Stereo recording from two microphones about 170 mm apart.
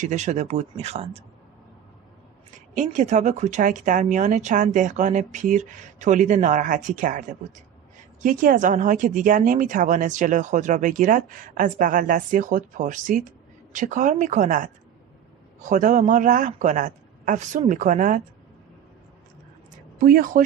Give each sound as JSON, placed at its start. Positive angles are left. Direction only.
{"t": 0.0, "sound": "speech", "side_deg": -45}
{"t": 2.7, "sound": "speech", "side_deg": -45}
{"t": 20.0, "sound": "speech", "side_deg": -55}